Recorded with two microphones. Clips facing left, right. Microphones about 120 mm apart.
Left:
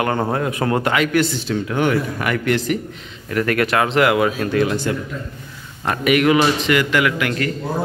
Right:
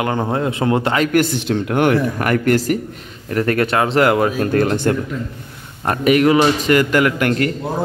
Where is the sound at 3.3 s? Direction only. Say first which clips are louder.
Right 1 dB; 30° right (ahead or behind); by 4.9 s 55° right (ahead or behind).